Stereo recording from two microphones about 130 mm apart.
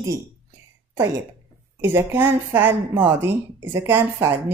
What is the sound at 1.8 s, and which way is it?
A woman's voice, 15° right (ahead or behind).